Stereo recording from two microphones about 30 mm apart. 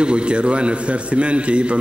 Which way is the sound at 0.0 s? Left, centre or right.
Right.